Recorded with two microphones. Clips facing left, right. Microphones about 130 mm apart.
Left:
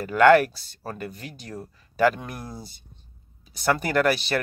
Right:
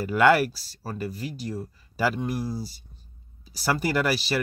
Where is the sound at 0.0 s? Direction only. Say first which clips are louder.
Left 3 dB; 5° right (ahead or behind).